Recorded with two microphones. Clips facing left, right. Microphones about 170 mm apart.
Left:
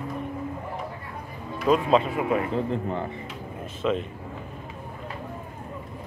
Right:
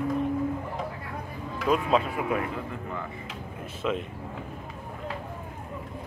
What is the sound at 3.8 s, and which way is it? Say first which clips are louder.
Speech: left 3 dB; 5° right (ahead or behind).